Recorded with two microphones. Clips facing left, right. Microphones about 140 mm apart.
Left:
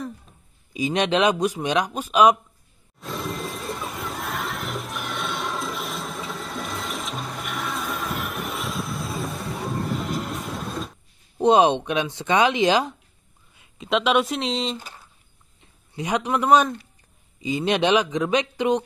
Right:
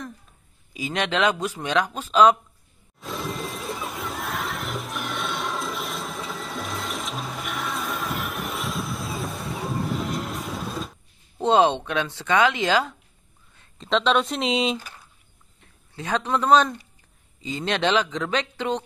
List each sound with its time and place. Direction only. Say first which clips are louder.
0.7 s speech: left 4 dB; 20° left (ahead or behind)
3.0 s a sound: left 1 dB; centre (ahead or behind)
11.3 s speech: left 2 dB; 15° left (ahead or behind)
13.6 s speech: even; 5° left (ahead or behind)
15.6 s a man's voice: left 4 dB; 15° left (ahead or behind)